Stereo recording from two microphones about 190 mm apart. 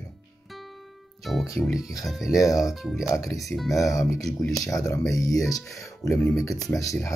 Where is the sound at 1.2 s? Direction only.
Centre (ahead or behind).